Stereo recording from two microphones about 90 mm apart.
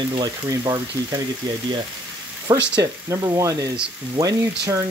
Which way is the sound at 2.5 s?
45° right (ahead or behind).